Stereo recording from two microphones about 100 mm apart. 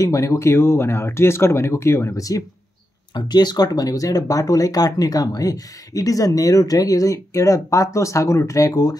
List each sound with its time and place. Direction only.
0.0 s speech: 30° left (ahead or behind)
3.2 s speech: 45° left (ahead or behind)